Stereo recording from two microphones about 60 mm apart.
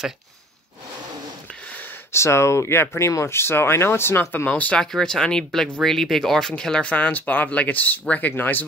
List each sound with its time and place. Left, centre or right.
2.1 s speech: left
4.5 s speech: left
4.9 s speech: centre; by 8.6 s left